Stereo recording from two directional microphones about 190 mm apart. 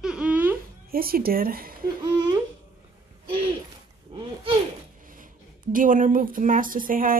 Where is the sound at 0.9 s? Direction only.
50° right (ahead or behind).